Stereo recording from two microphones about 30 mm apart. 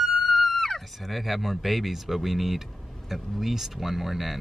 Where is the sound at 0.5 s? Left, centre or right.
Centre.